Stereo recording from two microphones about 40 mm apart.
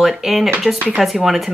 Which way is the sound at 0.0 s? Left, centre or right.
Centre.